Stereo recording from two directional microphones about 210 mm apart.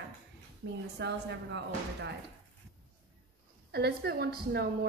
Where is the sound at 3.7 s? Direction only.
50° right (ahead or behind).